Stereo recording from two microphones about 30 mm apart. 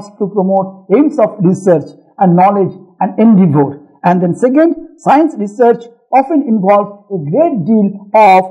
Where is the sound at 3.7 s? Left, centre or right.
Centre.